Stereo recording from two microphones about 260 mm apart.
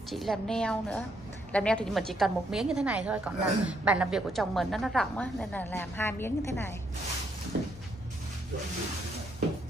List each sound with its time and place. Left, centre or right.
0.1 s a woman's voice: centre